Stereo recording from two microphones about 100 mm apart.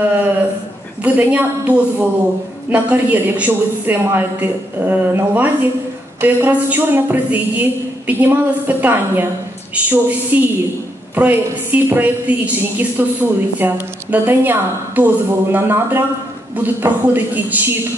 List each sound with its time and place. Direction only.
0.0 s a man's voice: 20° right (ahead or behind)